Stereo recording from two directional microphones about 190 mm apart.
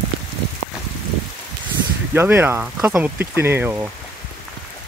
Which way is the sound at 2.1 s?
10° right (ahead or behind).